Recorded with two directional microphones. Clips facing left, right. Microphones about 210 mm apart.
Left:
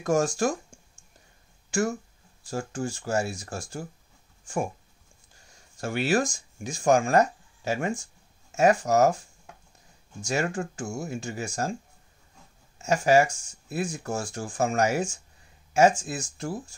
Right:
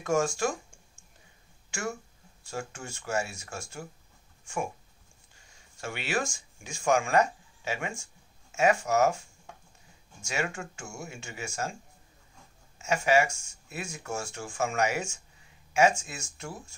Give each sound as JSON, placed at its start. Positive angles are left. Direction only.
{"t": 0.0, "sound": "speech", "side_deg": 35}
{"t": 1.7, "sound": "speech", "side_deg": 40}
{"t": 5.8, "sound": "speech", "side_deg": 40}
{"t": 10.2, "sound": "speech", "side_deg": 35}
{"t": 12.7, "sound": "speech", "side_deg": 35}